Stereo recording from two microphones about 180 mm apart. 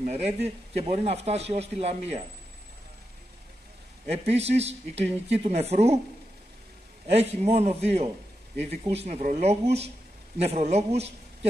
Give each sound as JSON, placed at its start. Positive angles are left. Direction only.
{"t": 0.0, "sound": "a man's voice", "side_deg": -35}
{"t": 4.1, "sound": "a man's voice", "side_deg": -35}
{"t": 7.1, "sound": "a man's voice", "side_deg": -35}